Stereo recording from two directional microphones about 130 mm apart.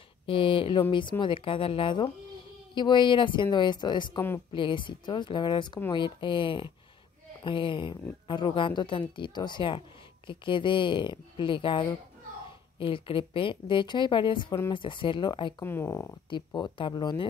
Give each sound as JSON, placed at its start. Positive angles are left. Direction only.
{"t": 0.3, "sound": "speech", "side_deg": 40}
{"t": 15.6, "sound": "speech", "side_deg": 20}
{"t": 16.3, "sound": "speech", "side_deg": 35}